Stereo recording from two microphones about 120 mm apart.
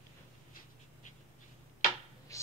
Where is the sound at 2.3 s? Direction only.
25° left (ahead or behind).